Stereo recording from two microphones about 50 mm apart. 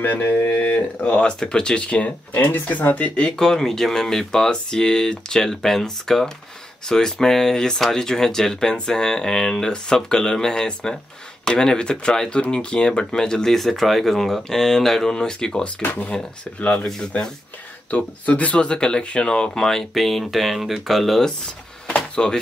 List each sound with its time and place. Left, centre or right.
0.0 s speech: left
1.2 s speech: centre
2.4 s speech: left
3.3 s speech: centre
15.8 s speech: left
16.1 s speech: left
17.9 s speech: left; by 21.3 s centre
21.8 s door: centre